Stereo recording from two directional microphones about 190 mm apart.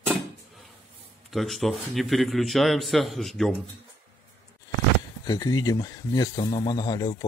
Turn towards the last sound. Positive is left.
turn(degrees=20)  # may be behind; listen again after turning